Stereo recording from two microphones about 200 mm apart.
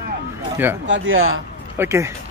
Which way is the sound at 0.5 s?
10° right (ahead or behind).